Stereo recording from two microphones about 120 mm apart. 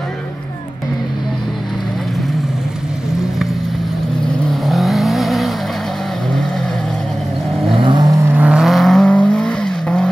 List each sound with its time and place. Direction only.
4.5 s vehicle: centre (ahead or behind)
7.8 s vehicle: 40° right (ahead or behind)
8.4 s vehicle: 5° right (ahead or behind)